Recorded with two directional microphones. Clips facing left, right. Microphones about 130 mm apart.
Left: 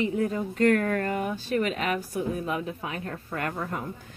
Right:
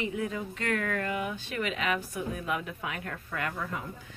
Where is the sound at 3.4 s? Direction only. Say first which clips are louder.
Left 3 dB; 45° left (ahead or behind).